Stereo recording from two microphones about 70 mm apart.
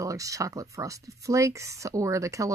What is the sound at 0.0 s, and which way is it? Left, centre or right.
Speech, right.